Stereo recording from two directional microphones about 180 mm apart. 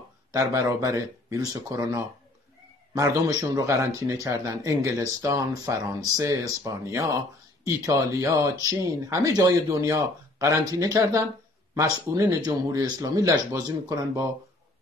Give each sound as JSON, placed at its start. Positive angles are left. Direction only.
{"t": 0.3, "sound": "speech", "side_deg": -15}
{"t": 12.4, "sound": "speech", "side_deg": -20}